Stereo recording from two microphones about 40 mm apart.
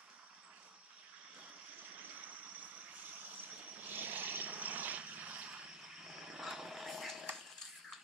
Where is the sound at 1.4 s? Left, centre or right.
Right.